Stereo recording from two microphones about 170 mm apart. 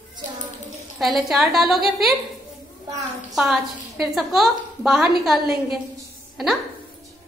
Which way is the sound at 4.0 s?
Centre (ahead or behind).